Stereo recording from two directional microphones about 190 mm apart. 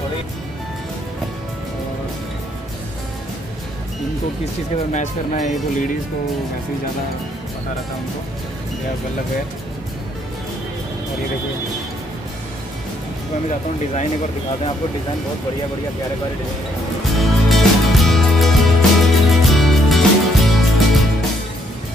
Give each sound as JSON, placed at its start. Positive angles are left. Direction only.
{"t": 4.9, "sound": "speech", "side_deg": 40}
{"t": 17.2, "sound": "music", "side_deg": 0}